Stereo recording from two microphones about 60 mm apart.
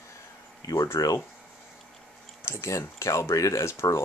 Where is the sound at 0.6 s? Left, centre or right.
Left.